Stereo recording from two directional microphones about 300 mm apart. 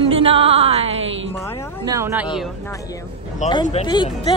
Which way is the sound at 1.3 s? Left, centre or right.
Centre.